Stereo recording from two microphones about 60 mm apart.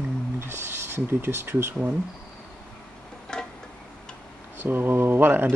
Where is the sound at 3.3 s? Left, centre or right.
Centre.